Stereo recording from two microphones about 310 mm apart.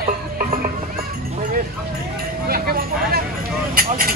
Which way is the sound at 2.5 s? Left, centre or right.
Right.